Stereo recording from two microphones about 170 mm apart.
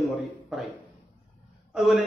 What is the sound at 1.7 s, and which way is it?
Speech, centre (ahead or behind).